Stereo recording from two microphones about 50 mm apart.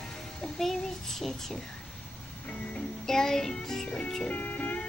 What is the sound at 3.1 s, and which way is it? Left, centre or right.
Music, centre.